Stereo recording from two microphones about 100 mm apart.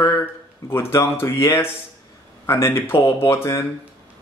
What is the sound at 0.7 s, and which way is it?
Speech, 25° left (ahead or behind).